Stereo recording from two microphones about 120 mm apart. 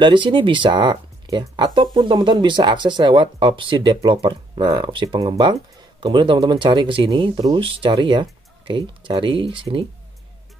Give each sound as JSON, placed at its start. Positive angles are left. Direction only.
{"t": 0.0, "sound": "speech", "side_deg": -40}
{"t": 5.2, "sound": "speech", "side_deg": -30}
{"t": 5.9, "sound": "speech", "side_deg": -40}